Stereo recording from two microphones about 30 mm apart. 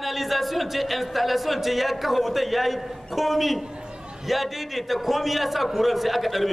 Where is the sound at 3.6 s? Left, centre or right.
Right.